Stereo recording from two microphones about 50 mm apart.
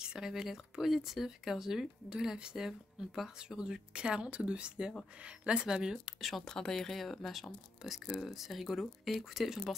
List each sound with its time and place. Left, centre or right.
0.0 s speech: centre
6.4 s speech: centre